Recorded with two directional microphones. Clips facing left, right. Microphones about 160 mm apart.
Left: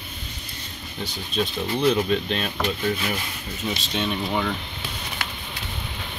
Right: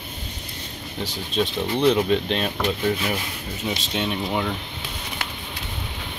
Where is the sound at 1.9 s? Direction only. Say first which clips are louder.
Right 2 dB; 25° right (ahead or behind).